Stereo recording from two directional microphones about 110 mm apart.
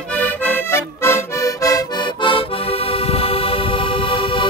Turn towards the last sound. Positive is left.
turn(degrees=55)  # may be behind; listen again after turning